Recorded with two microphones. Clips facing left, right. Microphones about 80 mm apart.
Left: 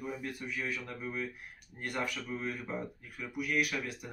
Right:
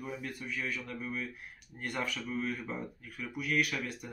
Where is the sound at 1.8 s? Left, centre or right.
Centre.